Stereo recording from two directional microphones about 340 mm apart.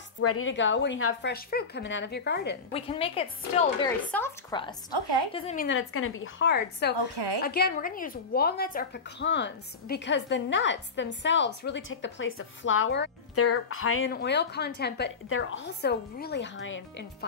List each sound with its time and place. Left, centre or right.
0.2 s a woman's voice: left
2.7 s a woman's voice: centre
5.7 s a woman's voice: left